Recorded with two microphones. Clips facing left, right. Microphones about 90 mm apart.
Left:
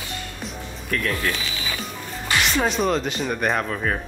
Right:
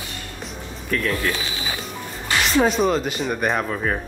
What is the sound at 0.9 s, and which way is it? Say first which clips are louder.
Speech: right 2 dB; centre (ahead or behind).